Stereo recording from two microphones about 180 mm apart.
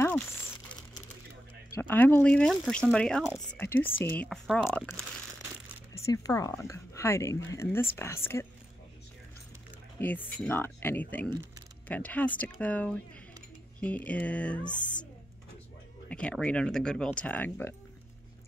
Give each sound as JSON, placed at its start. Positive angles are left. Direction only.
{"t": 0.0, "sound": "crumpling", "side_deg": 10}
{"t": 1.8, "sound": "speech", "side_deg": 10}
{"t": 3.6, "sound": "speech", "side_deg": 15}
{"t": 4.6, "sound": "speech", "side_deg": 15}
{"t": 5.9, "sound": "speech", "side_deg": 15}
{"t": 9.9, "sound": "speech", "side_deg": 10}
{"t": 16.1, "sound": "speech", "side_deg": 5}